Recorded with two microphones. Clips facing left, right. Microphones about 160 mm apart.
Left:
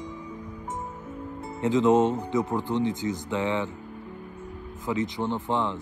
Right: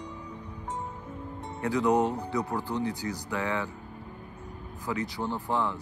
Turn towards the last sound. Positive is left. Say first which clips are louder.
# left 3 dB
turn(degrees=20)  # may be behind; listen again after turning